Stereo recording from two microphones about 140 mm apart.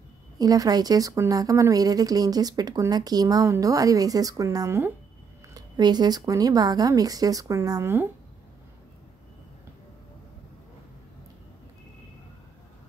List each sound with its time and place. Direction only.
0.4 s a woman's voice: 25° right (ahead or behind)
5.5 s a woman's voice: 30° right (ahead or behind)